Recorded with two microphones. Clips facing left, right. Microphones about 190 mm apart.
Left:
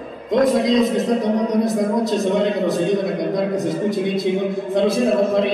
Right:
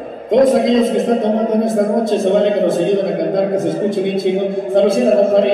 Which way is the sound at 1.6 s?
55° right (ahead or behind).